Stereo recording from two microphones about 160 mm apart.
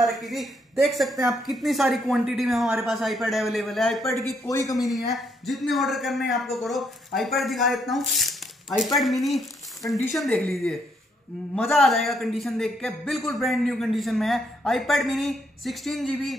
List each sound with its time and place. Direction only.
0.0 s a man's voice: centre (ahead or behind)
4.5 s speech: 20° left (ahead or behind)
4.8 s a man's voice: centre (ahead or behind)
11.5 s a man's voice: centre (ahead or behind)